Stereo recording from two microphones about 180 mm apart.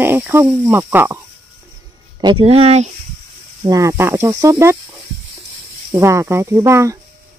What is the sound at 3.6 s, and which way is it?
Speech, 20° right (ahead or behind).